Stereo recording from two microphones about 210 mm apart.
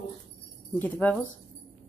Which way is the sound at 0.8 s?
10° left (ahead or behind).